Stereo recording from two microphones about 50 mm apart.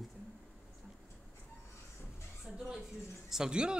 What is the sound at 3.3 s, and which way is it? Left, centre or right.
Speech, centre.